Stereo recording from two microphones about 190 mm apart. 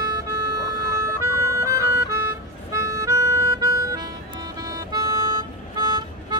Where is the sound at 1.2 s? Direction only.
15° right (ahead or behind).